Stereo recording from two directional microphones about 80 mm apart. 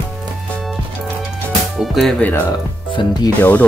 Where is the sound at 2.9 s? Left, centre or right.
Left.